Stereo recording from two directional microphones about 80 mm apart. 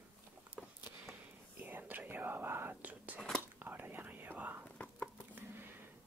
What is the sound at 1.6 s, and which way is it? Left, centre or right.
Whispering, right.